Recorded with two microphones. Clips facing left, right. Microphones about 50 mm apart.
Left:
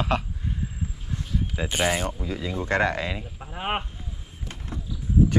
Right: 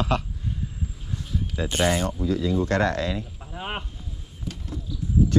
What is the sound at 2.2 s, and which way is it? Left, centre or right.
Speech, centre.